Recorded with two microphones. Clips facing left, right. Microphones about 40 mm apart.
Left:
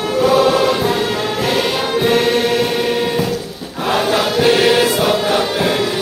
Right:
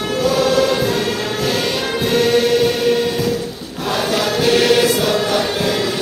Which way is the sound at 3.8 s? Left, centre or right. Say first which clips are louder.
Left 3 dB; left.